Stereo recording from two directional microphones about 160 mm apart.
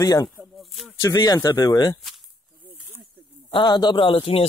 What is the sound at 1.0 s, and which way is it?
Speech, 25° left (ahead or behind).